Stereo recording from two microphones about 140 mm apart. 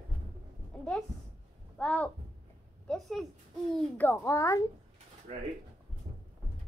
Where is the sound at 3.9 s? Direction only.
15° left (ahead or behind).